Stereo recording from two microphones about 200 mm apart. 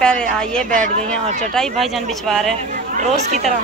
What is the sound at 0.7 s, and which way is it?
Speech, 40° right (ahead or behind).